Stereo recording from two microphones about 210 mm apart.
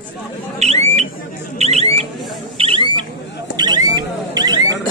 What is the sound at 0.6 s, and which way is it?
Alarm, 30° right (ahead or behind).